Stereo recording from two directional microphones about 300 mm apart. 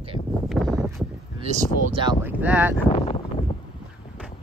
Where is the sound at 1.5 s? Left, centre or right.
Right; by 2.7 s centre.